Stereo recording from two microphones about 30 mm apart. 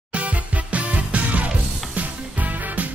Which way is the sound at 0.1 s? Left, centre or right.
Right.